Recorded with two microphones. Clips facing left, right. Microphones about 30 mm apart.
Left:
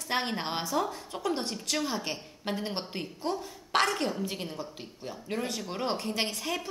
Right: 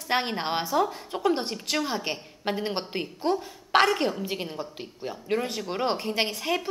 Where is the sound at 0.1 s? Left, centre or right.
Centre.